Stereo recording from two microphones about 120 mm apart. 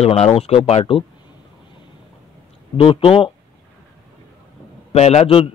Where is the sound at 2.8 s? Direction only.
50° left (ahead or behind).